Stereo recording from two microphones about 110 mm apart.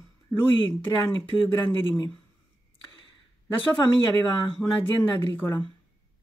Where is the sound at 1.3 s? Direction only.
Centre (ahead or behind).